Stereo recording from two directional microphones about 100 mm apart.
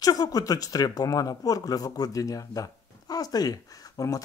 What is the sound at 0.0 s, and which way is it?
Speech, 40° left (ahead or behind).